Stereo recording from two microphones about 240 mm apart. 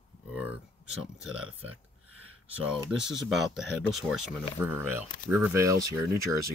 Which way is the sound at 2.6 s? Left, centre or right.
Centre.